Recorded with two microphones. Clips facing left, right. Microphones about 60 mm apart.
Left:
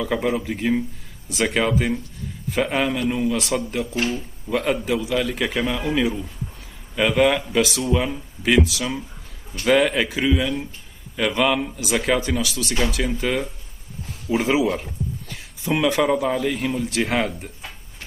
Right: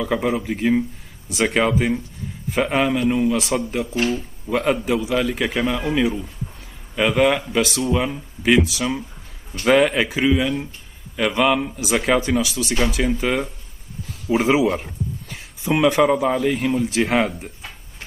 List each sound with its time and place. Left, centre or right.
0.0 s a man's voice: centre
14.3 s speech: right
14.7 s a sound: centre
15.6 s speech: centre